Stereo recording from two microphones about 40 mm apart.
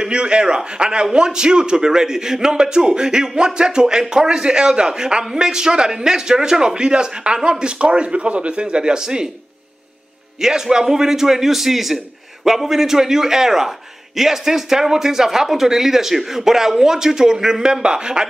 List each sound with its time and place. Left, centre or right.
0.0 s a man's voice: right
10.4 s a man's voice: centre